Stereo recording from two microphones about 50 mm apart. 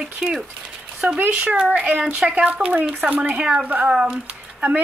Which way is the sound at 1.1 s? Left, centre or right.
Right.